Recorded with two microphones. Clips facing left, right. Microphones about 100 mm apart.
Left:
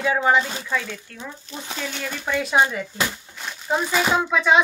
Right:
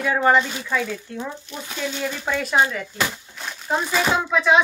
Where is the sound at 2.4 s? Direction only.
5° left (ahead or behind).